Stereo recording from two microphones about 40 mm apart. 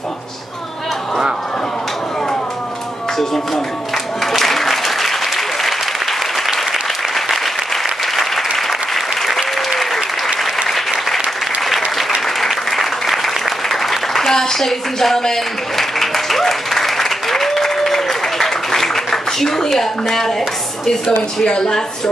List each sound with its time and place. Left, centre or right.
4.2 s applause: centre
7.2 s applause: centre
12.4 s applause: centre
19.7 s speech: centre